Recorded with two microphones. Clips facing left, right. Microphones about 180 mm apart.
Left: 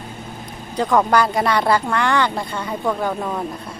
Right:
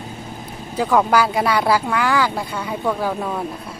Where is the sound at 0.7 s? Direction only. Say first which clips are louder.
Even; 5° right (ahead or behind).